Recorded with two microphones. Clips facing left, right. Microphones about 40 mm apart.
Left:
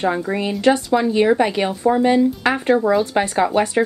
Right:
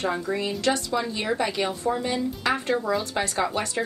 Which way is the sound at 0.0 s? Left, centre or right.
Left.